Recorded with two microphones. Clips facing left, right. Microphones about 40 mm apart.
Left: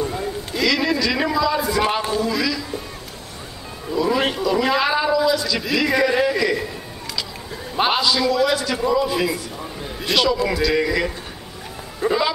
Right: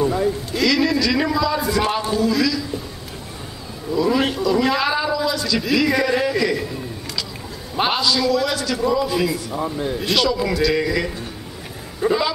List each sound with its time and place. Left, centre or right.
0.0 s a sound: centre
0.5 s a sound: centre
3.9 s a man's voice: centre
7.7 s a man's voice: centre
9.5 s a man's voice: right
9.9 s speech: centre